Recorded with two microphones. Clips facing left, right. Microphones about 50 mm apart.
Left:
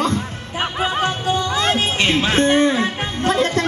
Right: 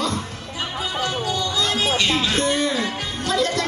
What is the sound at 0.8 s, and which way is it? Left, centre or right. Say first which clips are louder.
Music: left 5 dB; left.